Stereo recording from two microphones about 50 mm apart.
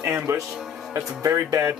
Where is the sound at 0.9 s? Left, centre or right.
Right.